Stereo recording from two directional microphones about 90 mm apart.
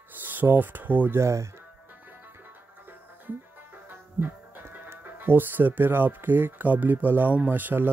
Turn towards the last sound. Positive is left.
turn(degrees=-20)  # may be behind; listen again after turning